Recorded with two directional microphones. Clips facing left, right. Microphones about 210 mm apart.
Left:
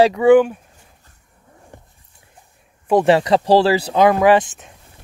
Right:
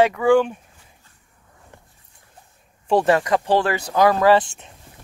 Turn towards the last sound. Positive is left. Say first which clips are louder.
# left 2 dB
turn(degrees=15)  # may be behind; listen again after turning